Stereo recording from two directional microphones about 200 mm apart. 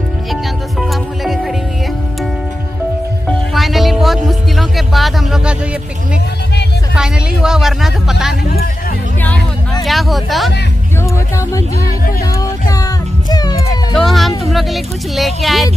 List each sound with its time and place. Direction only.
0.3 s music: centre (ahead or behind)
3.3 s music: centre (ahead or behind)
7.0 s speech: 5° right (ahead or behind)
11.1 s speech: 15° left (ahead or behind)
12.0 s speech: 45° left (ahead or behind)
12.3 s music: 20° left (ahead or behind)
13.9 s speech: centre (ahead or behind)